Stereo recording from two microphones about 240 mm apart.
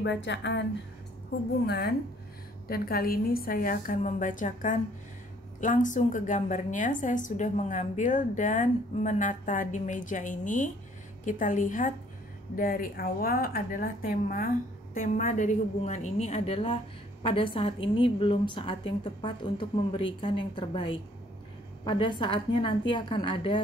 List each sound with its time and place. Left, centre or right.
0.0 s a woman's voice: left
2.7 s a woman's voice: left